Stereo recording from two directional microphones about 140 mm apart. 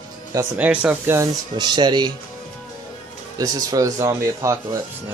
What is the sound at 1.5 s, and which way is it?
Speech, 30° right (ahead or behind).